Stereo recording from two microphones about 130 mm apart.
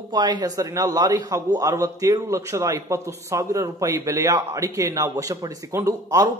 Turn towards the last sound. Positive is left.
turn(degrees=-25)  # may be behind; listen again after turning